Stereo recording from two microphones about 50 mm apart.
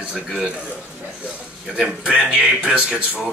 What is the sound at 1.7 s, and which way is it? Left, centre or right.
Speech, centre.